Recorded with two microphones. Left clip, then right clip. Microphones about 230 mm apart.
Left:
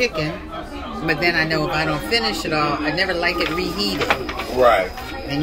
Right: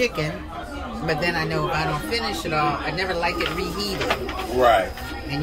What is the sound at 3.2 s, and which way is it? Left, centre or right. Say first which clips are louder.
Speech: left 3 dB; right.